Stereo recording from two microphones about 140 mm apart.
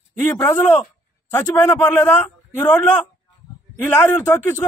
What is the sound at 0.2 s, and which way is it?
A man's voice, 15° left (ahead or behind).